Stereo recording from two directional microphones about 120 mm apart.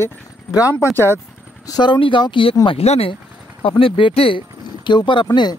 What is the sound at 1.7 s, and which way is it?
Speech, 40° left (ahead or behind).